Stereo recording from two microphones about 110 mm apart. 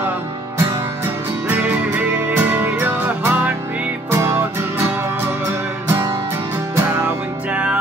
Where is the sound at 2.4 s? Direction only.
15° right (ahead or behind).